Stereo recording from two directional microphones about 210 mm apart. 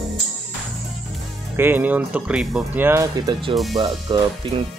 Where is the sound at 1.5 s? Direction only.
10° right (ahead or behind).